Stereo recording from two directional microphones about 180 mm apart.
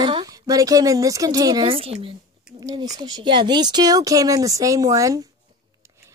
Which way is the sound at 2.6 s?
20° right (ahead or behind).